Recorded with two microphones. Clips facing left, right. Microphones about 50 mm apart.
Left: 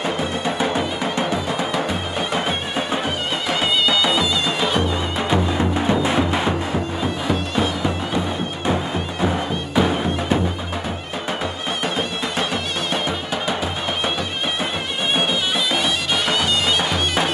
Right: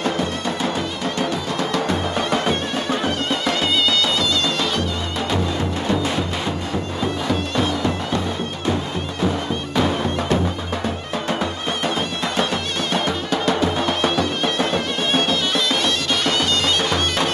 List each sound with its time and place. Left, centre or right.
0.0 s music: centre
9.8 s music: centre
12.9 s music: centre
15.1 s bagpipes: centre